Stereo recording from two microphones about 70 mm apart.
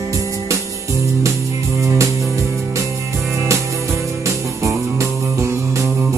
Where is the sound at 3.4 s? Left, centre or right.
Right.